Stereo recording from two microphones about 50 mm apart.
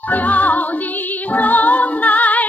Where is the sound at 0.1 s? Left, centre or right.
Left.